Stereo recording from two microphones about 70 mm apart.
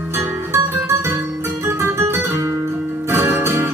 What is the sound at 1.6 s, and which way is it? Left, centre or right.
Guitar, right.